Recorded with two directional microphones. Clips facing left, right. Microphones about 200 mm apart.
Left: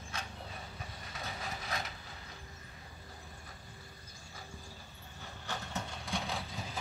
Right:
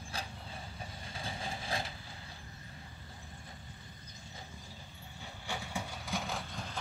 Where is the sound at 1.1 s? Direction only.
30° right (ahead or behind).